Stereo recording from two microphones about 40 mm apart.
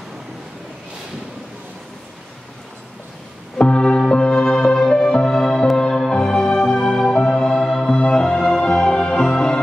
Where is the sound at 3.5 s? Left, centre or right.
Left.